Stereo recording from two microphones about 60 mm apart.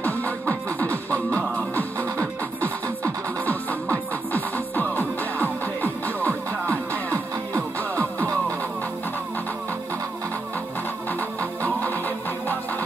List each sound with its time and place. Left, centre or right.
0.0 s music: left
11.1 s music: left